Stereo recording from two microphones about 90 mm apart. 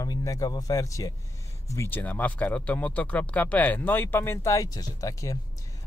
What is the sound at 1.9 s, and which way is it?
Speech, 20° left (ahead or behind).